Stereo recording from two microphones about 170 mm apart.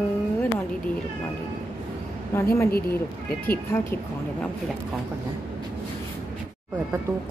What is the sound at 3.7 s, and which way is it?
Speech, 15° left (ahead or behind).